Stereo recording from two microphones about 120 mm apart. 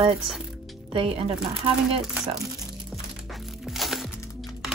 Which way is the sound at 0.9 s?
50° right (ahead or behind).